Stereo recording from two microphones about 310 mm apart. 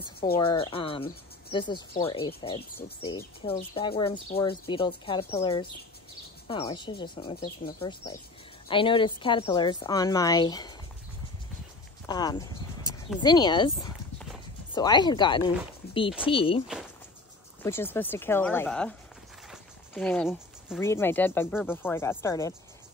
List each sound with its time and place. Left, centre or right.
0.4 s speech: centre
12.1 s speech: centre
14.7 s speech: centre
17.6 s speech: centre